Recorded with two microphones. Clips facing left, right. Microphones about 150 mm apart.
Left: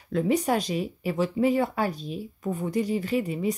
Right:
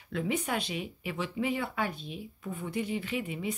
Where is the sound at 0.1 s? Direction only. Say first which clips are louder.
Left 8 dB; 35° left (ahead or behind).